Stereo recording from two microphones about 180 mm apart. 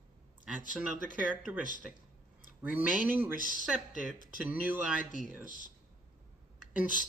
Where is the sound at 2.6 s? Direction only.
10° right (ahead or behind).